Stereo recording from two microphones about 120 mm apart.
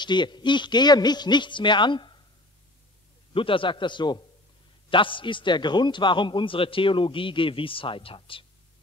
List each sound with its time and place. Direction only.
0.0 s speech: 40° left (ahead or behind)
3.3 s a man's voice: 45° left (ahead or behind)